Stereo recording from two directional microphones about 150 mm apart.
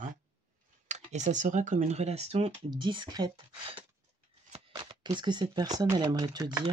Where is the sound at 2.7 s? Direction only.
30° right (ahead or behind).